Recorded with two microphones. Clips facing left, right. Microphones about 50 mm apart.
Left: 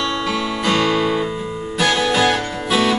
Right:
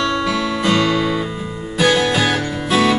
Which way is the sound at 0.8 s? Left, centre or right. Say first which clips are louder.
Even; centre.